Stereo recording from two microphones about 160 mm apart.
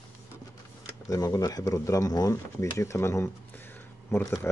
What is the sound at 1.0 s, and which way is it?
Speech, 20° left (ahead or behind).